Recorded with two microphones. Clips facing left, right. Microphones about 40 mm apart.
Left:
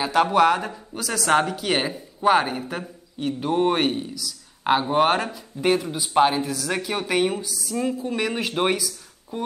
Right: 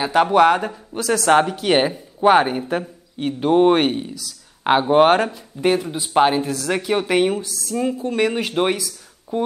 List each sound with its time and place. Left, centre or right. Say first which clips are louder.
0.0 s speech: right 4 dB; centre
5.2 s speech: right 4 dB; centre
6.1 s speech: right 3 dB; centre
6.4 s speech: right 3 dB; centre
6.7 s speech: right 6 dB; centre
7.3 s speech: right 3 dB; centre
7.8 s speech: right 5 dB; centre